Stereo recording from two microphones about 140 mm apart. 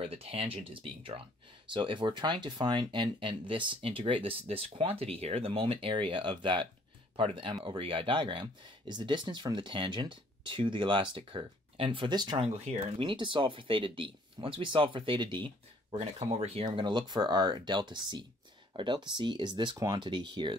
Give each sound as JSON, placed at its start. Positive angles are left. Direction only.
{"t": 0.0, "sound": "speech", "side_deg": -45}